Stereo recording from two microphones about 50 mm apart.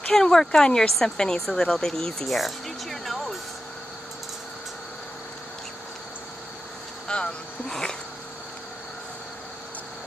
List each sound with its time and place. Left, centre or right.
0.1 s speech: centre
7.1 s speech: centre